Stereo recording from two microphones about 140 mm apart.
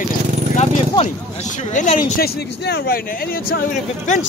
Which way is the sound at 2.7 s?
90° left.